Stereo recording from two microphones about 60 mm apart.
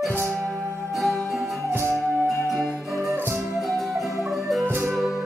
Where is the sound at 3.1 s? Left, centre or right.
Right.